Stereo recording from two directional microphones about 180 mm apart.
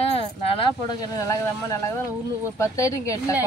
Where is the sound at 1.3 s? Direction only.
15° left (ahead or behind).